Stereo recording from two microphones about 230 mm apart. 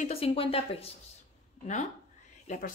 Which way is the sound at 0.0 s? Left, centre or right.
Left.